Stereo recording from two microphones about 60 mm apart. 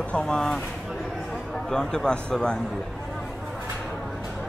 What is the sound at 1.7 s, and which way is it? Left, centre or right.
Speech, centre.